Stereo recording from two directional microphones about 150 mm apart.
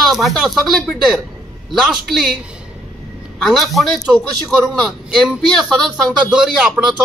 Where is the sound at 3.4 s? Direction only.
Centre (ahead or behind).